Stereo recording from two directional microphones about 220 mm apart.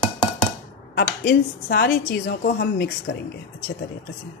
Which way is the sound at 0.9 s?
45° left (ahead or behind).